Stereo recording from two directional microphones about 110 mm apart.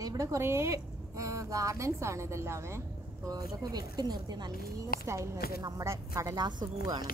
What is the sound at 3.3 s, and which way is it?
A woman's voice, 35° right (ahead or behind).